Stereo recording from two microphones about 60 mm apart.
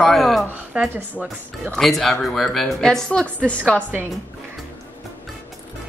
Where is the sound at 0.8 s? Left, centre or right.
Centre.